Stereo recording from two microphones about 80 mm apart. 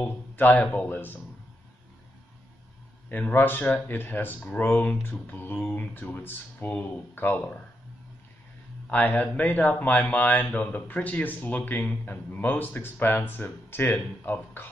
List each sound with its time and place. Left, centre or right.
0.4 s a man's voice: left
3.1 s a man's voice: left
8.9 s a man's voice: left